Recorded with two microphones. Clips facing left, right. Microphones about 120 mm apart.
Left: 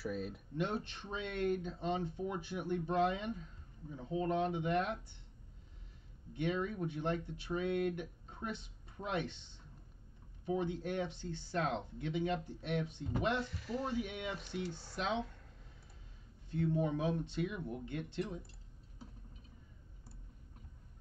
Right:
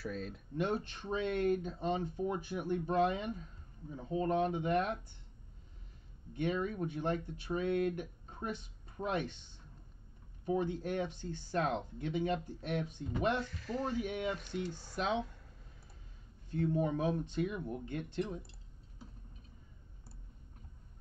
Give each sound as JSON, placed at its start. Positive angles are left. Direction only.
{"t": 0.0, "sound": "speech", "side_deg": 10}
{"t": 0.6, "sound": "speech", "side_deg": -45}
{"t": 6.3, "sound": "speech", "side_deg": -45}
{"t": 13.4, "sound": "speech", "side_deg": 15}
{"t": 13.8, "sound": "speech", "side_deg": -45}
{"t": 14.3, "sound": "speech", "side_deg": 5}
{"t": 14.7, "sound": "speech", "side_deg": -10}
{"t": 16.4, "sound": "speech", "side_deg": -45}